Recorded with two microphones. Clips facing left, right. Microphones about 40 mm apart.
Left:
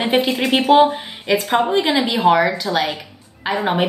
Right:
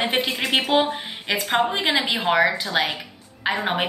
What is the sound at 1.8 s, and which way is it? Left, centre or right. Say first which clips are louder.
Speech: left 4 dB; right.